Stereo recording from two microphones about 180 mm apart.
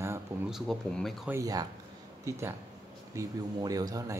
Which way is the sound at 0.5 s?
Centre (ahead or behind).